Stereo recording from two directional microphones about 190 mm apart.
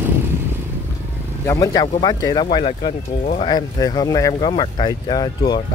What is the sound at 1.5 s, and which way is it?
Speech, 20° left (ahead or behind).